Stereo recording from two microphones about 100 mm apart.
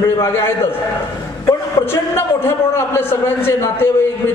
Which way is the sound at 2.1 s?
25° left (ahead or behind).